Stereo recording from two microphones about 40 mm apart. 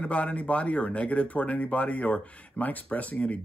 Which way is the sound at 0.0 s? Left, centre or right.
Left.